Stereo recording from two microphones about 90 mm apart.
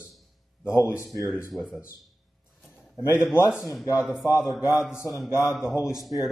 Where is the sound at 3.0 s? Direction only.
30° left (ahead or behind).